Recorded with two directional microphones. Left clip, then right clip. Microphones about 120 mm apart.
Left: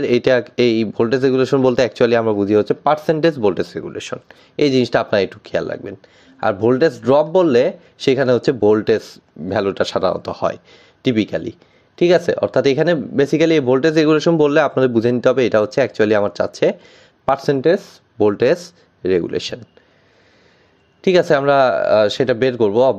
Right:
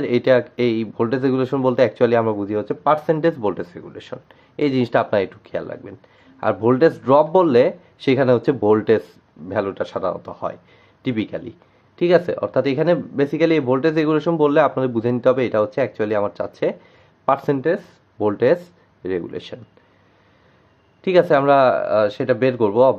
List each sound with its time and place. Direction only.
0.0 s speech: 45° left (ahead or behind)
3.7 s speech: 50° left (ahead or behind)
6.4 s speech: 30° left (ahead or behind)
9.5 s speech: 50° left (ahead or behind)
21.0 s speech: 45° left (ahead or behind)